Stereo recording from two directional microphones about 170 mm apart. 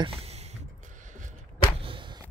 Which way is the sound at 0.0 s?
35° right (ahead or behind).